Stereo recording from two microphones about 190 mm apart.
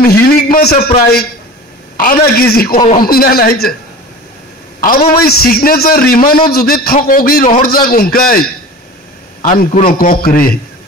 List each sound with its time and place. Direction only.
0.0 s a man's voice: 55° left (ahead or behind)
4.8 s a man's voice: 50° left (ahead or behind)